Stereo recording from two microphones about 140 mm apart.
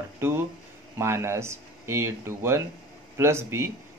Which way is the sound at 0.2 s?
15° right (ahead or behind).